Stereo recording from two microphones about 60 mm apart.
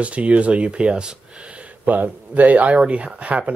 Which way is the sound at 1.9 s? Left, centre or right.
Right.